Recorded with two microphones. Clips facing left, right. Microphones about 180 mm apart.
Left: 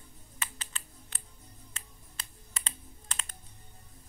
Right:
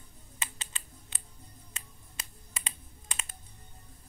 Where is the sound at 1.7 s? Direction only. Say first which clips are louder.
Right 1 dB; 15° right (ahead or behind).